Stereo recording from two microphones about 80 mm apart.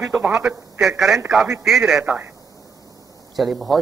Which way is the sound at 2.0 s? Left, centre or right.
Right.